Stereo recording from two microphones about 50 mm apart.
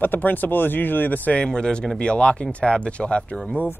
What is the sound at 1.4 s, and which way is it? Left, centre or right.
Speech, centre.